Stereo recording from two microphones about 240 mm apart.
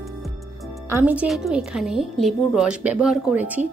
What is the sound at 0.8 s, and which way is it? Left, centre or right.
A woman's voice, centre.